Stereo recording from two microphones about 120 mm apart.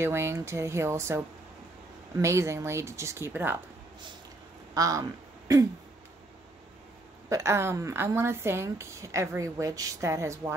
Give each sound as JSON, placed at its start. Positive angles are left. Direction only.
{"t": 0.0, "sound": "a woman's voice", "side_deg": -20}
{"t": 4.7, "sound": "a woman's voice", "side_deg": -30}
{"t": 7.2, "sound": "a woman's voice", "side_deg": -25}